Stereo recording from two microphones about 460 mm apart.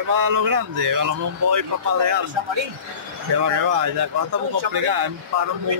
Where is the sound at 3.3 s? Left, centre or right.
Right.